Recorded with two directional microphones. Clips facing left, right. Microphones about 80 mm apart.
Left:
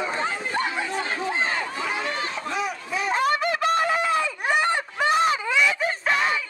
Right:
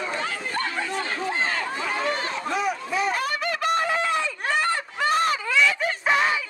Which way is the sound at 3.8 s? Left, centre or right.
Centre.